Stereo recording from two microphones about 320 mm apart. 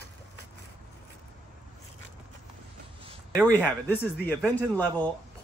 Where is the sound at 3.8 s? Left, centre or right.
Centre.